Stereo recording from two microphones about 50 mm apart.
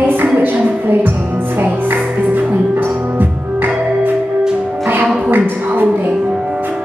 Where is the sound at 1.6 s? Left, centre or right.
Right.